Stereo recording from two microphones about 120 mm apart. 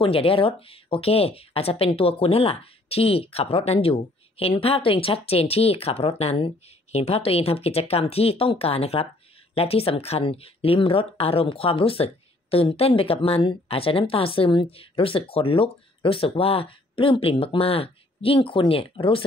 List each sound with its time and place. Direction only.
0.0 s speech: 50° left (ahead or behind)